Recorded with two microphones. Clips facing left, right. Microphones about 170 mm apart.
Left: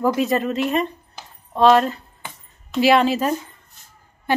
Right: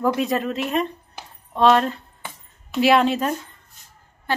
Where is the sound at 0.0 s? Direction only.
Centre (ahead or behind).